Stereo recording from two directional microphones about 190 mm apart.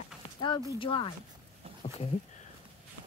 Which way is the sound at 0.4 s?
25° left (ahead or behind).